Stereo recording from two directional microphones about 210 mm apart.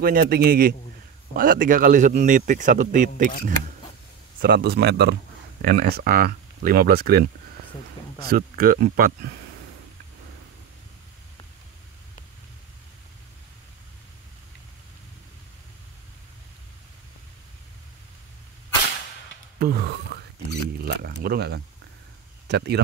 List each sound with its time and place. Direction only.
0.0 s speech: 45° right (ahead or behind)
4.4 s speech: 50° right (ahead or behind)
8.3 s speech: 45° right (ahead or behind)
19.6 s a sound: 50° right (ahead or behind)
20.8 s speech: 50° right (ahead or behind)